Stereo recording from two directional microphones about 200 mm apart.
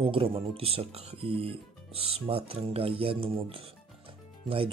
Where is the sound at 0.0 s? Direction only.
25° right (ahead or behind).